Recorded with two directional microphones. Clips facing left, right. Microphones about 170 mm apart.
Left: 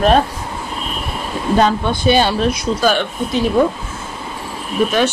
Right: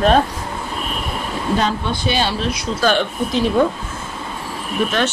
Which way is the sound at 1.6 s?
50° left (ahead or behind).